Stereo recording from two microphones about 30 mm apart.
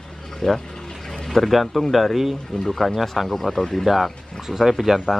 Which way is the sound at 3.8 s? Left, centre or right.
Centre.